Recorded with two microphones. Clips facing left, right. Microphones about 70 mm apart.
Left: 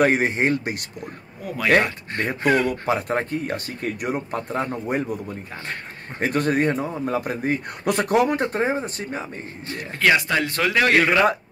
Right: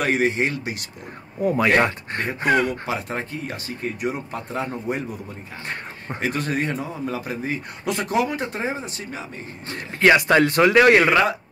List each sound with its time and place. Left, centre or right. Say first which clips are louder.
0.0 s a man's voice: left 2 dB; left
1.4 s a man's voice: right 2 dB; right
2.9 s a man's voice: left 5 dB; left
9.7 s speech: right 3 dB; right
10.5 s a man's voice: right 3 dB; right